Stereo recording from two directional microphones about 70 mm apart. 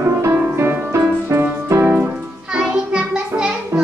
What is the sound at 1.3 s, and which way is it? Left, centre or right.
Music, right.